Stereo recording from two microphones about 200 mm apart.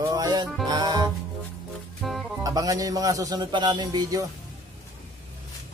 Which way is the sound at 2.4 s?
15° right (ahead or behind).